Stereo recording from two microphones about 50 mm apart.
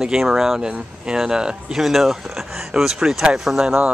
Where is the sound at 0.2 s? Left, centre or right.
Centre.